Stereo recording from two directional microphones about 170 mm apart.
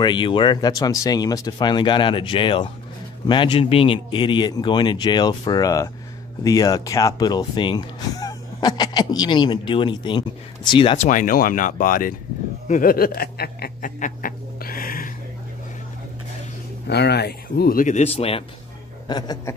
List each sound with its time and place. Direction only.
0.0 s speech: 30° left (ahead or behind)
11.0 s speech: 50° left (ahead or behind)
12.6 s snicker: 55° left (ahead or behind)
16.8 s speech: 75° left (ahead or behind); by 18.4 s 35° left (ahead or behind)
19.0 s speech: 25° left (ahead or behind)